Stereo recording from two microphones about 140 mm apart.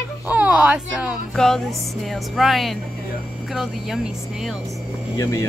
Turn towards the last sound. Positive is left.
turn(degrees=25)  # may be behind; listen again after turning